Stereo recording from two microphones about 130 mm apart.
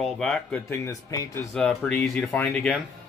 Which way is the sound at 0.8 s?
25° left (ahead or behind).